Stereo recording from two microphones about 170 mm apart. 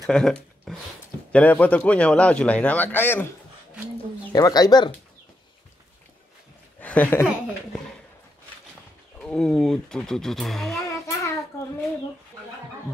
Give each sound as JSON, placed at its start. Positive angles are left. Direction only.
{"t": 0.0, "sound": "a man's voice", "side_deg": 5}
{"t": 4.3, "sound": "speech", "side_deg": 20}
{"t": 6.8, "sound": "speech", "side_deg": 10}
{"t": 9.2, "sound": "speech", "side_deg": 5}
{"t": 10.8, "sound": "child singing", "side_deg": 15}